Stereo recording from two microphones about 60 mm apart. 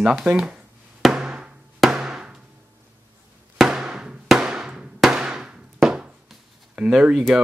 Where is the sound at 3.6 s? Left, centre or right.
Centre.